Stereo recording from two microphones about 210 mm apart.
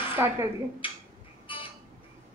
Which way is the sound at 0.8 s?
25° left (ahead or behind).